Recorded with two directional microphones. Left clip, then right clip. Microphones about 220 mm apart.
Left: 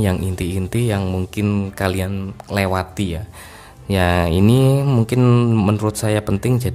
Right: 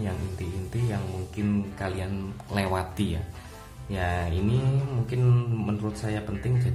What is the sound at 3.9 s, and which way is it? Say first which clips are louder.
Speech: left 13 dB; 45° left (ahead or behind).